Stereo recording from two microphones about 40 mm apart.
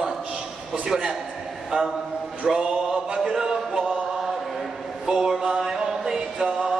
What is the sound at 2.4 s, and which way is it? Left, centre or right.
Chant, centre.